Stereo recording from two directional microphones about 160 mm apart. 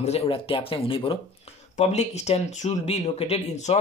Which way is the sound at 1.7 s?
45° left (ahead or behind).